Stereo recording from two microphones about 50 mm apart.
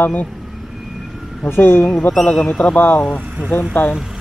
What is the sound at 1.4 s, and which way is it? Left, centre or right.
A man's voice, left.